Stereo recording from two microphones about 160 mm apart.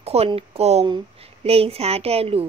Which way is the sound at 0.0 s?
40° right (ahead or behind).